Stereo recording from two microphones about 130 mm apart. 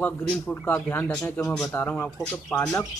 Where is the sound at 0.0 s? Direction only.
10° left (ahead or behind).